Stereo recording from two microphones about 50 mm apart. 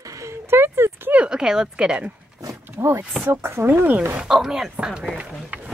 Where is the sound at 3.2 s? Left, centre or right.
Right.